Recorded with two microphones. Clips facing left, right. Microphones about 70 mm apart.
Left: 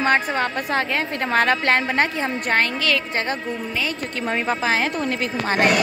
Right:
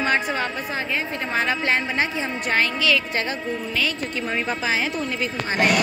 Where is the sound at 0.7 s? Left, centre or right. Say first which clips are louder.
Left 4 dB; left.